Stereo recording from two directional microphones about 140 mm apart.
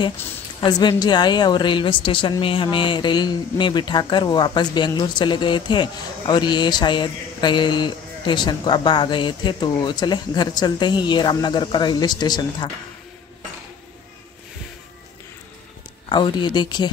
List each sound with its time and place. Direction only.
0.6 s speech: 30° left (ahead or behind)
16.1 s speech: 30° left (ahead or behind)